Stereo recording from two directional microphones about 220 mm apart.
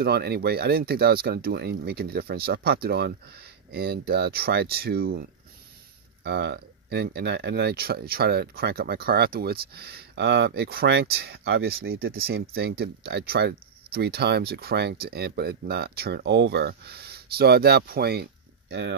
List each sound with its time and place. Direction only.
0.0 s speech: 45° right (ahead or behind)
6.2 s speech: 50° right (ahead or behind)